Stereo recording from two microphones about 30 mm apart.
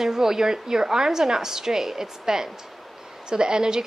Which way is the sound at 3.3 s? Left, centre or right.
Right.